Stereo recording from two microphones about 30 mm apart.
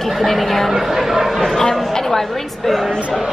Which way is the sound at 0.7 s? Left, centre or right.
Centre.